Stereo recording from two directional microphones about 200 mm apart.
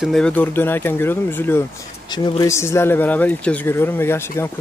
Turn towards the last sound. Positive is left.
turn(degrees=10)  # may be behind; listen again after turning